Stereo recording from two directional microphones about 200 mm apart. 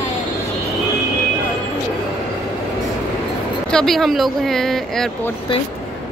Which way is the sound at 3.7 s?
Centre (ahead or behind).